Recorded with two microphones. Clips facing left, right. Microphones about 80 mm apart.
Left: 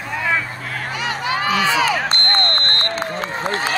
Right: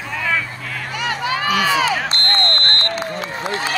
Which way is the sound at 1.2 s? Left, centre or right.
Left.